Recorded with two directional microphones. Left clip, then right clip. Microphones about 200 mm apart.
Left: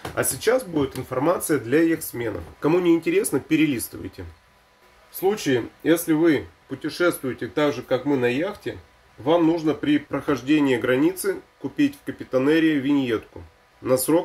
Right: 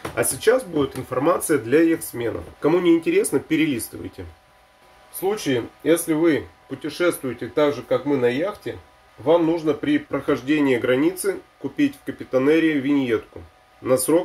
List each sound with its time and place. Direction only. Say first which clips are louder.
0.1 s speech: right 2 dB; 5° right (ahead or behind)
5.2 s speech: left 1 dB; 5° left (ahead or behind)